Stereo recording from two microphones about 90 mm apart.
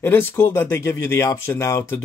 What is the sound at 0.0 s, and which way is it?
Speech, 25° left (ahead or behind).